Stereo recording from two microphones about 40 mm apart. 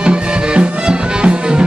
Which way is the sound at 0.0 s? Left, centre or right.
Right.